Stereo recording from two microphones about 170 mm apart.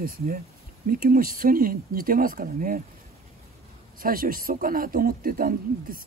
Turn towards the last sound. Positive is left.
turn(degrees=-60)  # may be behind; listen again after turning